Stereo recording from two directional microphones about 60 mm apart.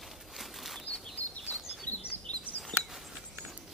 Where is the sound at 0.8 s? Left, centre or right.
Left.